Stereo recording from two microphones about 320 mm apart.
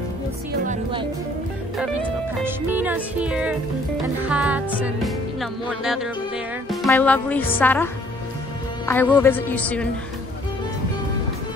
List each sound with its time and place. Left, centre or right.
0.5 s music: right
1.8 s music: centre
6.7 s speech: centre